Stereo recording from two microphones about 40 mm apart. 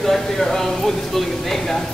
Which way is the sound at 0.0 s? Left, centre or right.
Centre.